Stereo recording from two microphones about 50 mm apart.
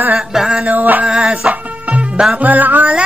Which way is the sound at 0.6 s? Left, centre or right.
Right.